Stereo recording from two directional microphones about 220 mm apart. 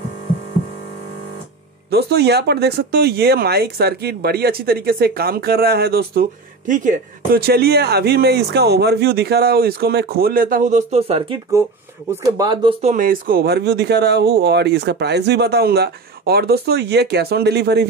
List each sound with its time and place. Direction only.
1.9 s speech: 45° right (ahead or behind); by 12.9 s 20° right (ahead or behind)
12.9 s speech: 40° right (ahead or behind)